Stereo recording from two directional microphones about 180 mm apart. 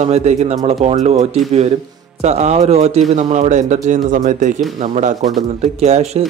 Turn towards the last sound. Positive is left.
turn(degrees=-40)  # may be behind; listen again after turning